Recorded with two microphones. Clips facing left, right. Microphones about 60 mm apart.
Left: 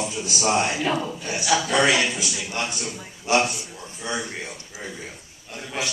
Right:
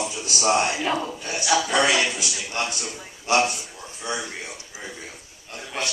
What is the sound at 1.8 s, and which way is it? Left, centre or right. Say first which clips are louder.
A man's voice: left 1 dB; left.